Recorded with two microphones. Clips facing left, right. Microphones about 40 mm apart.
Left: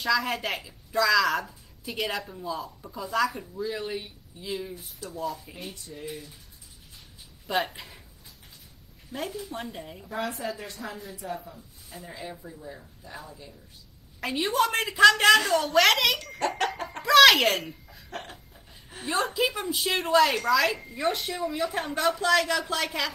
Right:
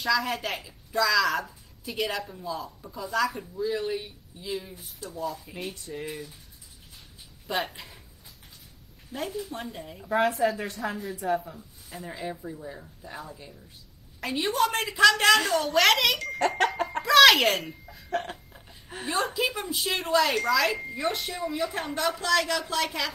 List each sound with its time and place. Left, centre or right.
0.0 s a woman's voice: centre
5.9 s speech: right
7.4 s a woman's voice: centre
9.1 s a woman's voice: centre
10.0 s speech: right
11.2 s speech: right
12.0 s speech: centre
14.2 s a woman's voice: centre
16.3 s speech: right
17.0 s speech: centre
18.1 s hiccup: right
18.9 s a woman's voice: right
19.3 s a woman's voice: centre